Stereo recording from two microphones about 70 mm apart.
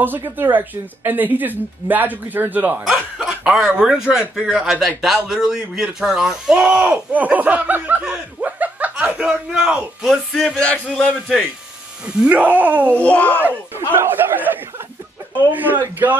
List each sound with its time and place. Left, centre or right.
0.0 s speech: right
2.8 s a man's voice: centre
6.8 s speech: right
8.0 s chuckle: centre
10.0 s speech: centre
10.6 s a sound: centre
12.2 s speech: right
12.9 s a sound: centre
13.9 s speech: right